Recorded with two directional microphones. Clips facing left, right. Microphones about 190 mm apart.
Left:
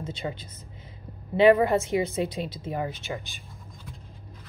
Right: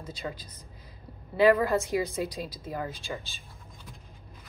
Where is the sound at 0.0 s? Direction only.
25° left (ahead or behind).